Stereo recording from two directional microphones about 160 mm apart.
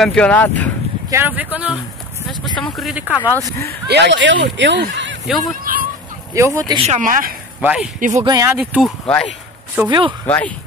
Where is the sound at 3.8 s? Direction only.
90° right.